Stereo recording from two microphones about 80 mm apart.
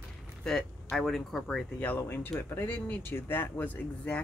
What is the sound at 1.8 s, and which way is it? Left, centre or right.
Speech, left.